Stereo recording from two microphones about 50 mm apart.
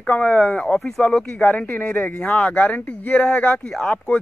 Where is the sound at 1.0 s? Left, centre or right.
Left.